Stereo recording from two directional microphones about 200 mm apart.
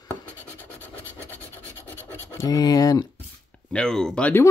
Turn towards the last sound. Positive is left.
turn(degrees=5)  # may be behind; listen again after turning